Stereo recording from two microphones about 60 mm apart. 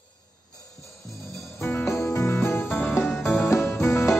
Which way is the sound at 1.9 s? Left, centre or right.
Left.